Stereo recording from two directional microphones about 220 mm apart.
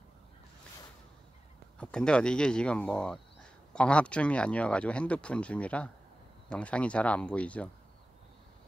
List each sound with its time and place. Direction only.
1.8 s speech: 5° left (ahead or behind)